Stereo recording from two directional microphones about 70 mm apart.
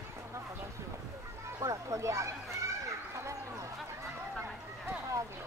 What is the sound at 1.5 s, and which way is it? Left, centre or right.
Speech, right.